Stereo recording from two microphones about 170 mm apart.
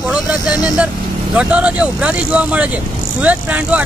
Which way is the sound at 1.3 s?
5° right (ahead or behind).